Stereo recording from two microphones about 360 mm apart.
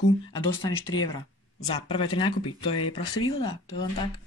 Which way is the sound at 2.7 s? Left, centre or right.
Left.